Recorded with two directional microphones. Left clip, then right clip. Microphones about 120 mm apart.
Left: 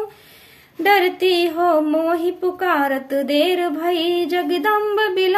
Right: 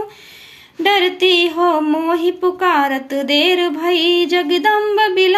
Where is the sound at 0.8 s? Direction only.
40° left (ahead or behind).